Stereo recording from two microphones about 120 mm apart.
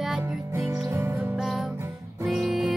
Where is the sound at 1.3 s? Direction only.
5° right (ahead or behind).